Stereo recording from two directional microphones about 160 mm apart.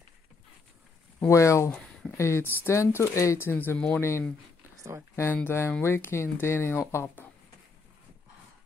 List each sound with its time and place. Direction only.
1.2 s speech: 20° left (ahead or behind)
1.7 s a sound: 5° left (ahead or behind)
2.1 s speech: 15° left (ahead or behind)